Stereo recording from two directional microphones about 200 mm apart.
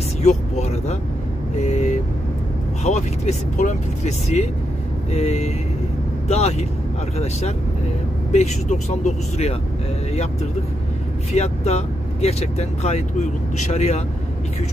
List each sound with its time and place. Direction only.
0.2 s speech: 35° left (ahead or behind)
8.3 s speech: 35° left (ahead or behind)
11.3 s speech: 35° left (ahead or behind)